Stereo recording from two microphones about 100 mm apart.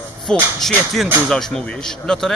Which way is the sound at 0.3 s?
5° left (ahead or behind).